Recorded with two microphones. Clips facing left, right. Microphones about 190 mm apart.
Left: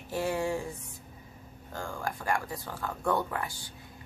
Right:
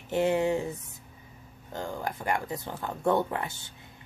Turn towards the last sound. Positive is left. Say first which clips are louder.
# right 3 dB
turn(degrees=-25)  # may be behind; listen again after turning